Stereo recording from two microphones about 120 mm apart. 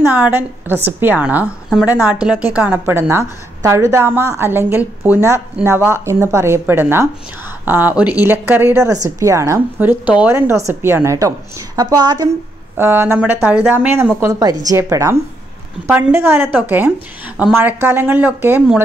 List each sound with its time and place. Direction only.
0.0 s a woman's voice: 15° right (ahead or behind)
9.8 s a woman's voice: 15° right (ahead or behind); by 12.3 s 35° right (ahead or behind)
12.7 s speech: 15° right (ahead or behind)